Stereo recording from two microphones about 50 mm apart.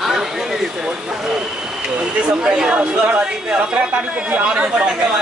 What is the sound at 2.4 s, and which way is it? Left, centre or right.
Speech, centre.